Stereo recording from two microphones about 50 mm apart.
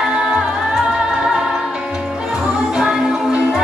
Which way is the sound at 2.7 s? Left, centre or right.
Centre.